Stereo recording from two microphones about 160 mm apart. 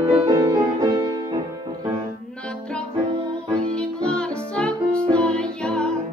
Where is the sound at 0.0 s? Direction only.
20° right (ahead or behind).